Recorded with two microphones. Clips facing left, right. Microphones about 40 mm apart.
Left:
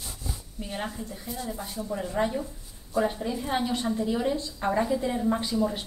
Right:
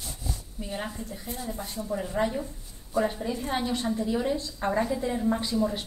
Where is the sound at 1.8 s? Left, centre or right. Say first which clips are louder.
Even; centre.